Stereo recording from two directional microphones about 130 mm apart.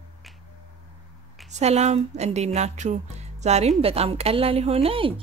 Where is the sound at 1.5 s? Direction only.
60° right (ahead or behind).